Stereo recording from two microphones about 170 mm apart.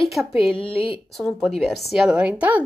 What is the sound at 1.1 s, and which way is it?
A woman's voice, centre (ahead or behind).